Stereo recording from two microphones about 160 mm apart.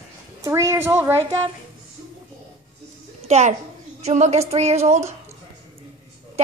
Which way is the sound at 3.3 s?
45° right (ahead or behind).